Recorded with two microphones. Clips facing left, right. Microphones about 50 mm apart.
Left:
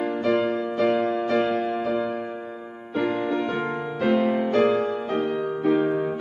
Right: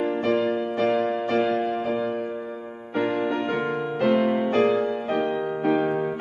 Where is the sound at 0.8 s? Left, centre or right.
Left.